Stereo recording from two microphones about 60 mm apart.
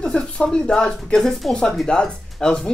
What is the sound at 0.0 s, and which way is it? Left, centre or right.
Speech, centre.